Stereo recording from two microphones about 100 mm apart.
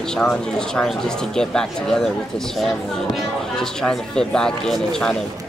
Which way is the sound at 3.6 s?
5° left (ahead or behind).